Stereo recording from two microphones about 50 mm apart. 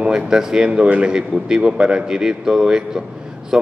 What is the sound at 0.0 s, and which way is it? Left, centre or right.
A man's voice, centre.